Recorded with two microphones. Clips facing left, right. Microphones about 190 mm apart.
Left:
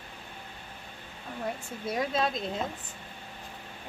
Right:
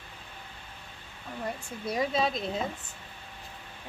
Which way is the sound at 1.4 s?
Centre (ahead or behind).